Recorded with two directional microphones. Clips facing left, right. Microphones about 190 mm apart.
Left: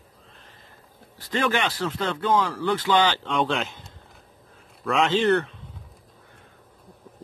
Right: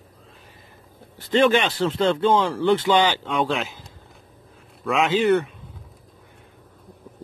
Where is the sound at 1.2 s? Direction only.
25° right (ahead or behind); by 3.8 s centre (ahead or behind).